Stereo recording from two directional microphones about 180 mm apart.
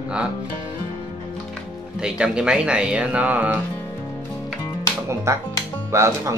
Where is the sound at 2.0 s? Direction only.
5° right (ahead or behind).